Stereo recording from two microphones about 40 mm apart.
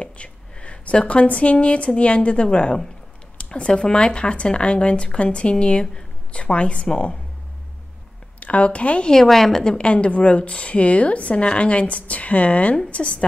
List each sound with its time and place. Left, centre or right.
0.0 s a woman's voice: left
8.4 s a woman's voice: left
9.1 s a woman's voice: centre
9.7 s a woman's voice: left